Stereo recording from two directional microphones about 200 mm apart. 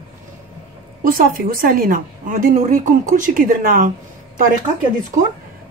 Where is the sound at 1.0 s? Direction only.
45° right (ahead or behind).